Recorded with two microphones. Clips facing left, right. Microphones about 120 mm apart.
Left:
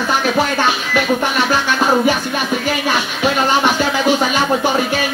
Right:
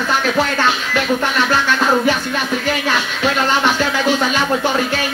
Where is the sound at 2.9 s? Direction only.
10° left (ahead or behind).